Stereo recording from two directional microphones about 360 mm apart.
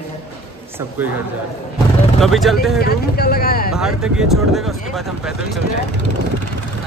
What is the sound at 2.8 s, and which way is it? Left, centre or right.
Speech, left.